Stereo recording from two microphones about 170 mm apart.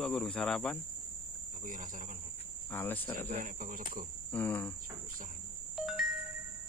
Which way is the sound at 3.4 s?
55° right (ahead or behind).